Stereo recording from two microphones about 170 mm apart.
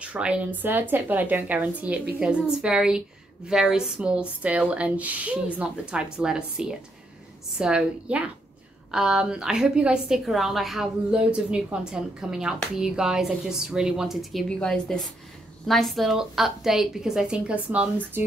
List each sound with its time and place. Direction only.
0.0 s a woman's voice: 5° right (ahead or behind)